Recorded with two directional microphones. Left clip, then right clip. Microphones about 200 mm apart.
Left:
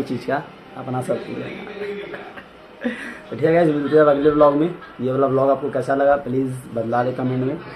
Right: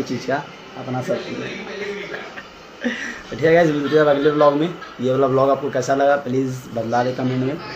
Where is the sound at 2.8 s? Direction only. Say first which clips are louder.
Right 3 dB; 15° left (ahead or behind).